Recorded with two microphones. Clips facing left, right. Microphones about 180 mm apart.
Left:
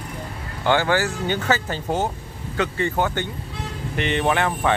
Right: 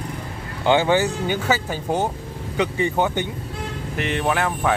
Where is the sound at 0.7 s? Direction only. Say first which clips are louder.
Right 2 dB; 20° right (ahead or behind).